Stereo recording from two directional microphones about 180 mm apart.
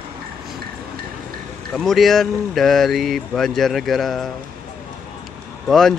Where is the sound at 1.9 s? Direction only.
Centre (ahead or behind).